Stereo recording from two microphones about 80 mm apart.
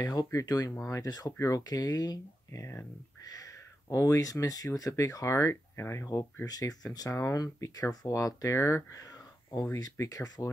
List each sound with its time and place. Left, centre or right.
0.0 s speech: left
3.9 s speech: left
6.4 s speech: left
9.8 s speech: left